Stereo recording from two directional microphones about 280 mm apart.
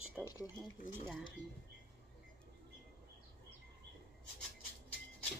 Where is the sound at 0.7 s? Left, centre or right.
Left.